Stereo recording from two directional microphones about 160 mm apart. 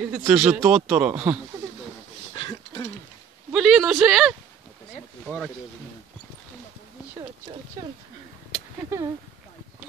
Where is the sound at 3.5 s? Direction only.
Centre (ahead or behind).